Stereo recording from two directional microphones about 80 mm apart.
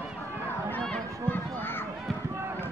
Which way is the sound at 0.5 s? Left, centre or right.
Left.